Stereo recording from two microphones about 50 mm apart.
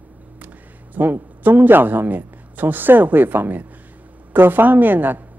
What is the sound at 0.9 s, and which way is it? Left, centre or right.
A man's voice, right.